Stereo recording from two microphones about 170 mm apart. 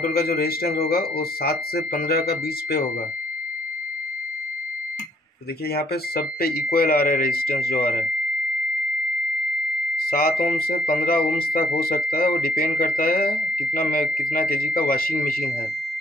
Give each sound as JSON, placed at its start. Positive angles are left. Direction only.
{"t": 0.0, "sound": "speech", "side_deg": 65}
{"t": 5.7, "sound": "speech", "side_deg": 65}
{"t": 9.9, "sound": "speech", "side_deg": 60}